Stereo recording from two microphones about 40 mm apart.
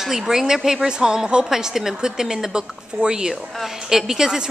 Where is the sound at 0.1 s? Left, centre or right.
Centre.